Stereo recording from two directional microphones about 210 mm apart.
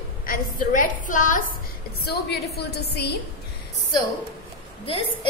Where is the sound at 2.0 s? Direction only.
50° left (ahead or behind).